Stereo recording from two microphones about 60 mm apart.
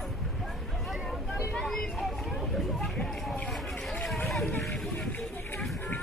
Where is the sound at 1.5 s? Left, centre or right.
Centre.